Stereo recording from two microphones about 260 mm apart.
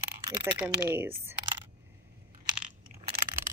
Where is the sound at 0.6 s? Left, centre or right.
Centre.